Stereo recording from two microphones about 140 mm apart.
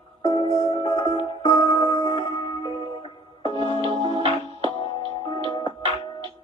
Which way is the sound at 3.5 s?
40° right (ahead or behind).